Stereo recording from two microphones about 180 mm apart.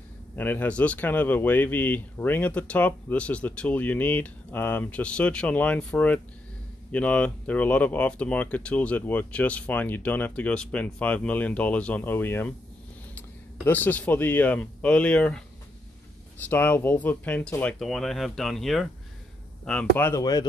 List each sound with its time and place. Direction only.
0.4 s speech: 10° left (ahead or behind)
13.7 s speech: 10° left (ahead or behind)
20.0 s speech: 15° left (ahead or behind)